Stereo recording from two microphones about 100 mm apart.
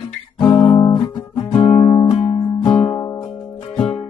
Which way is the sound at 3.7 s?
75° left (ahead or behind).